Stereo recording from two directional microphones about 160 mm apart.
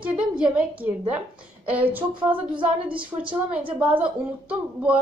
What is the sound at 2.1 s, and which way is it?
Speech, 30° right (ahead or behind).